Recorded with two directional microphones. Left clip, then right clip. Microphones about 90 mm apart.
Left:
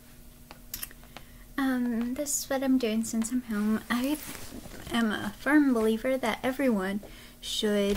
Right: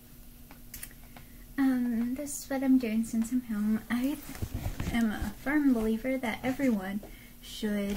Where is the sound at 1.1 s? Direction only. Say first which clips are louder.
Even; 25° left (ahead or behind).